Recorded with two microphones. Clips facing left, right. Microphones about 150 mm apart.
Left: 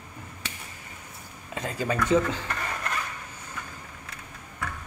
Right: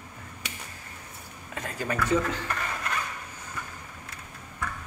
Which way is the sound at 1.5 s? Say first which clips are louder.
Left 2 dB; 25° left (ahead or behind).